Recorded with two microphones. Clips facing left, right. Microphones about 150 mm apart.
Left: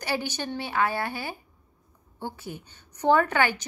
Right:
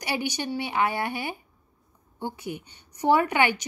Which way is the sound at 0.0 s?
15° right (ahead or behind).